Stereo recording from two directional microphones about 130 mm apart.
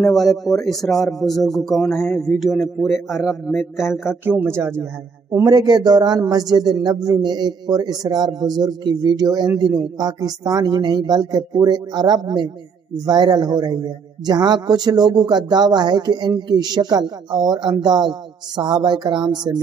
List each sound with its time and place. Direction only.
0.0 s a man's voice: centre (ahead or behind)
4.2 s a man's voice: 15° right (ahead or behind); by 19.5 s 35° right (ahead or behind)